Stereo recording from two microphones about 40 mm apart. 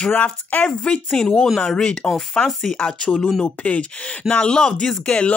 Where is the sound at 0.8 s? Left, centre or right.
Left.